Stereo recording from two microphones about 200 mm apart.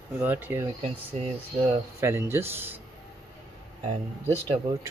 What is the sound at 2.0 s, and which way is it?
Speech, 10° right (ahead or behind).